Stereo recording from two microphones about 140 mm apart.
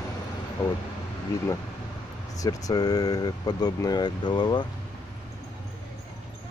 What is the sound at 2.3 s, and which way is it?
Speech, 25° left (ahead or behind).